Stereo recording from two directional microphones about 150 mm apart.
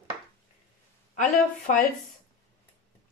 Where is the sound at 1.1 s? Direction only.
55° left (ahead or behind).